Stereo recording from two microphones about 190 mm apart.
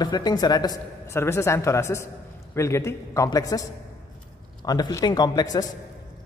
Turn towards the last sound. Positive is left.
turn(degrees=20)  # may be behind; listen again after turning